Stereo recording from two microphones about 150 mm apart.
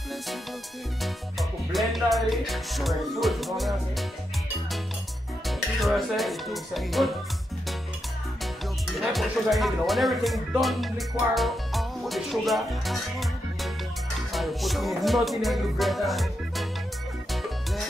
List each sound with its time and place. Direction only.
1.0 s music: centre (ahead or behind)
5.5 s speech: centre (ahead or behind)
9.0 s speech: centre (ahead or behind)
14.3 s music: centre (ahead or behind)